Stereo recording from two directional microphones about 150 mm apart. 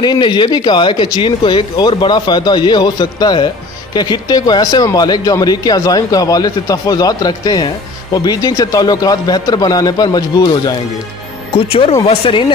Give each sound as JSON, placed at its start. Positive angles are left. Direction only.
{"t": 0.0, "sound": "speech", "side_deg": 30}
{"t": 11.5, "sound": "speech", "side_deg": 35}